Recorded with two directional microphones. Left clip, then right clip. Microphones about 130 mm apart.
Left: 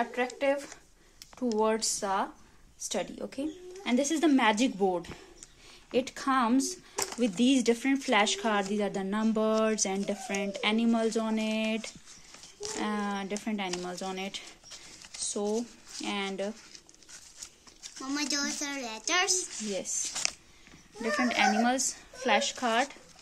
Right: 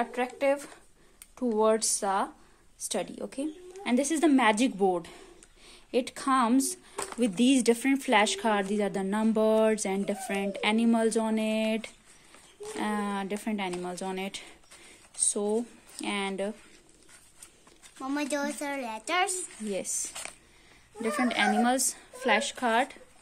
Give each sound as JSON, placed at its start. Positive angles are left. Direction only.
{"t": 0.0, "sound": "a woman's voice", "side_deg": -30}
{"t": 18.0, "sound": "speech", "side_deg": -90}
{"t": 19.7, "sound": "speech", "side_deg": -45}
{"t": 21.0, "sound": "speech", "side_deg": -45}